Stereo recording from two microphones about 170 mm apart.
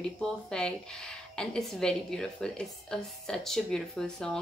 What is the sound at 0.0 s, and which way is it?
A woman's voice, 5° left (ahead or behind).